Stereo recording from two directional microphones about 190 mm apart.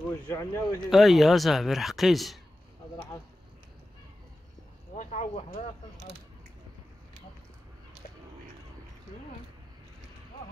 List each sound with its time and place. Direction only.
0.3 s speech: 15° left (ahead or behind)
0.8 s speech: centre (ahead or behind)
4.9 s speech: 40° left (ahead or behind)